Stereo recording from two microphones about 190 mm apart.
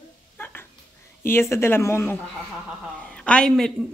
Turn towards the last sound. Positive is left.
turn(degrees=5)  # may be behind; listen again after turning